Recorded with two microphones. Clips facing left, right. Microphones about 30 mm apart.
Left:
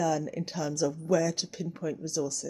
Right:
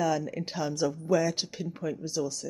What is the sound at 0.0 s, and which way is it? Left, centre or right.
Speech, right.